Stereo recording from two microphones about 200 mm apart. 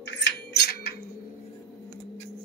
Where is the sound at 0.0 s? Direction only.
55° left (ahead or behind).